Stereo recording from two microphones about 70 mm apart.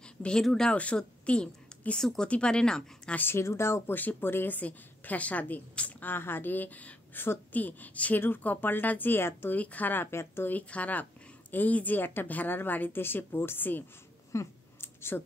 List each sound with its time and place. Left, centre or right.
0.0 s speech: centre
0.7 s speech: centre
2.0 s speech: centre
3.2 s speech: left
3.9 s a woman's voice: left
10.1 s speech: left
10.5 s a woman's voice: left
14.3 s a sound: left